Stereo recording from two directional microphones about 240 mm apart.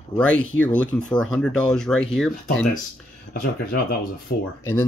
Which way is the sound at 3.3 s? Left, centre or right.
Left.